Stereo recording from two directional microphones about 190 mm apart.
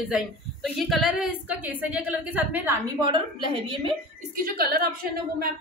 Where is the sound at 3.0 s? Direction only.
25° right (ahead or behind).